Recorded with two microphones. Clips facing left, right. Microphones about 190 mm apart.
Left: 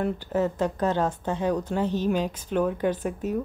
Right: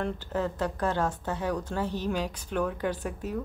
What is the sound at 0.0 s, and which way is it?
Speech, 15° left (ahead or behind).